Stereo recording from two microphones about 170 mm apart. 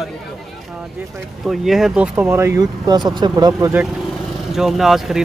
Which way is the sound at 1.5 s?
Centre (ahead or behind).